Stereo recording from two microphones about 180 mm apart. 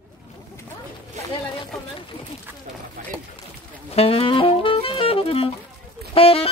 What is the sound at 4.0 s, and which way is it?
Saxophone, 35° left (ahead or behind).